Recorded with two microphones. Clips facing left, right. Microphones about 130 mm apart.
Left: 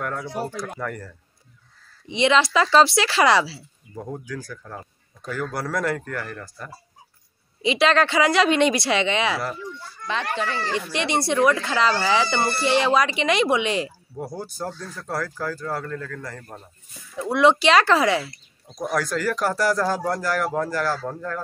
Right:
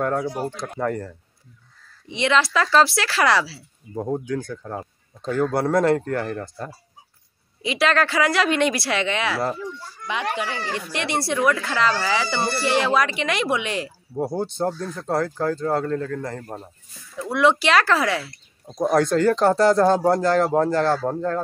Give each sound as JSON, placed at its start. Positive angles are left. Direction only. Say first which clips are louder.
{"t": 0.0, "sound": "speech", "louder": "right 7 dB", "side_deg": -35}
{"t": 0.5, "sound": "a man's voice", "louder": "right 4 dB", "side_deg": -25}
{"t": 2.0, "sound": "speech", "louder": "left 2 dB", "side_deg": 0}
{"t": 3.9, "sound": "a man's voice", "louder": "right 7 dB", "side_deg": -25}
{"t": 7.6, "sound": "speech", "louder": "left 2 dB", "side_deg": 0}
{"t": 10.0, "sound": "speech", "louder": "even", "side_deg": -15}
{"t": 10.7, "sound": "speech", "louder": "left 2 dB", "side_deg": 0}
{"t": 14.1, "sound": "a man's voice", "louder": "right 9 dB", "side_deg": -25}
{"t": 17.3, "sound": "speech", "louder": "left 1 dB", "side_deg": 0}
{"t": 18.8, "sound": "a man's voice", "louder": "right 7 dB", "side_deg": -25}